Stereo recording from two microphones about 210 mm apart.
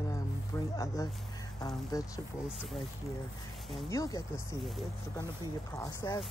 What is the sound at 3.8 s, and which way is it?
Speech, 15° left (ahead or behind).